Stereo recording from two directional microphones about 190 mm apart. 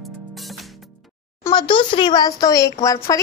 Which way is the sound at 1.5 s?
25° left (ahead or behind).